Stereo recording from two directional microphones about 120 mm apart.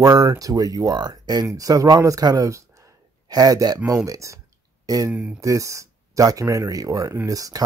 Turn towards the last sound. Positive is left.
turn(degrees=-30)  # may be behind; listen again after turning